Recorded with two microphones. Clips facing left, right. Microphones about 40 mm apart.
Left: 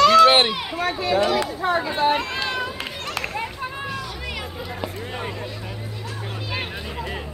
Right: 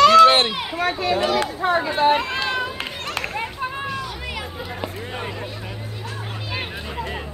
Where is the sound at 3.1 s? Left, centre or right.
Right.